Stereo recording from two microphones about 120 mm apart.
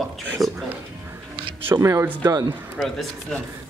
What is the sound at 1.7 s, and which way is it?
Speech, 20° right (ahead or behind).